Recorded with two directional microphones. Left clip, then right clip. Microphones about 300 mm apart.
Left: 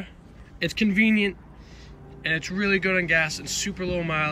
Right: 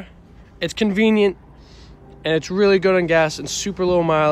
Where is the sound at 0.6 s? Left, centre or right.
Centre.